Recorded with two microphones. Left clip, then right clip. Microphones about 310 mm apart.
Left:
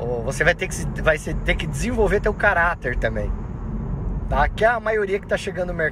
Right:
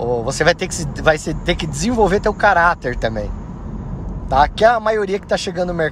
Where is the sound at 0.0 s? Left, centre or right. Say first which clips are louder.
Right 4 dB; centre.